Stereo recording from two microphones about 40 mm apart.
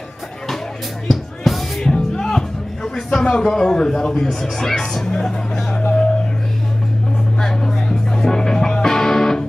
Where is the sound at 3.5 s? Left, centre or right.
Centre.